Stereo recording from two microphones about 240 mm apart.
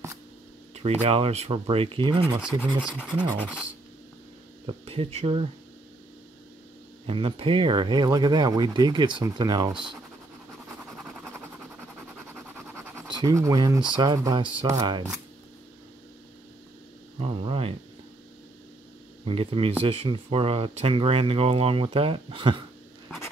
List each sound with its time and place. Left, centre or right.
0.7 s speech: right
4.6 s speech: right
7.1 s speech: right
12.4 s scratch: centre
13.9 s speech: centre
17.2 s speech: right
19.2 s speech: right